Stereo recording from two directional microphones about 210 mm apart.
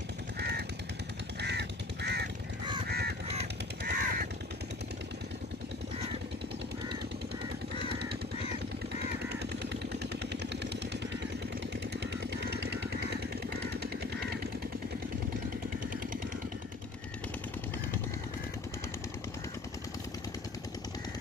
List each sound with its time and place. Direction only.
0.4 s crow: 50° right (ahead or behind)
9.9 s vehicle: 55° right (ahead or behind)
12.4 s jackhammer: 55° right (ahead or behind)